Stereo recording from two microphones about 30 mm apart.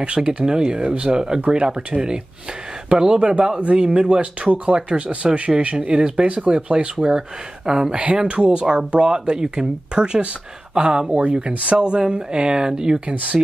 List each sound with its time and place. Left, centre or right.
0.0 s speech: right
7.9 s speech: right
13.1 s speech: right